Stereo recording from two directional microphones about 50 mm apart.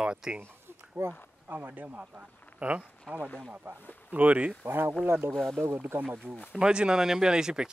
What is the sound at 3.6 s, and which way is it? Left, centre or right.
Speech, right.